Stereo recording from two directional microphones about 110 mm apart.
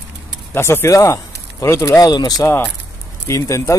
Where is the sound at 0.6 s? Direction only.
25° left (ahead or behind).